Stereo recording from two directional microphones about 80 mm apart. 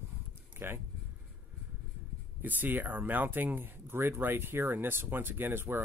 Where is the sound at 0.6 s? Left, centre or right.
Right.